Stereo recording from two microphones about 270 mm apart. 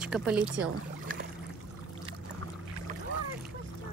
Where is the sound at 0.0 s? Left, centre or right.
Centre.